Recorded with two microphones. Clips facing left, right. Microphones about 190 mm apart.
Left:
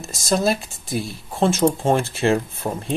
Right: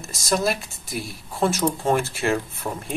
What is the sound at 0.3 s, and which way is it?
Speech, 25° left (ahead or behind).